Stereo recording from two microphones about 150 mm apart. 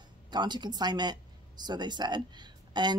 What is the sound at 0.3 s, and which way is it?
Speech, 30° right (ahead or behind).